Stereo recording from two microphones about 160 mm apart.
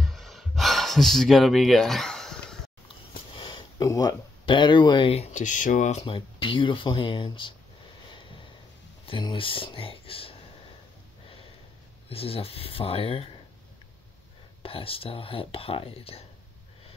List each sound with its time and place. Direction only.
0.0 s gasp: centre (ahead or behind)
3.3 s speech: 30° left (ahead or behind); by 6.0 s 50° left (ahead or behind)
6.0 s speech: 30° left (ahead or behind)
8.1 s vehicle: 30° left (ahead or behind)
9.0 s speech: 30° left (ahead or behind)
12.1 s speech: 35° left (ahead or behind)
14.6 s speech: 35° left (ahead or behind)